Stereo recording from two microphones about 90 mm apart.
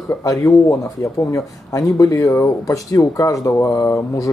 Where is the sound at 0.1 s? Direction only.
35° left (ahead or behind).